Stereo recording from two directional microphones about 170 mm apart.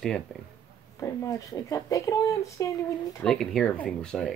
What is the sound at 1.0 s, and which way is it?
Speech, 20° left (ahead or behind).